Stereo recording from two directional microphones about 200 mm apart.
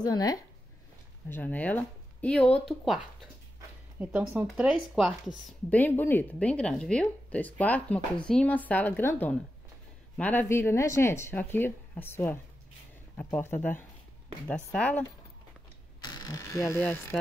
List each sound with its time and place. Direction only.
0.0 s speech: 20° left (ahead or behind)
1.3 s speech: 10° left (ahead or behind)
4.0 s speech: 10° right (ahead or behind)
5.7 s speech: 10° left (ahead or behind)
16.0 s speech: 15° left (ahead or behind)